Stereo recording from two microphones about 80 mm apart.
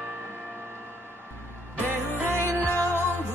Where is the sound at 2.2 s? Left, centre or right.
Right.